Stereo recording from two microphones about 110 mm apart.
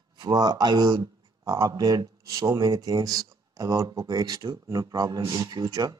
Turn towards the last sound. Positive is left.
turn(degrees=-35)  # may be behind; listen again after turning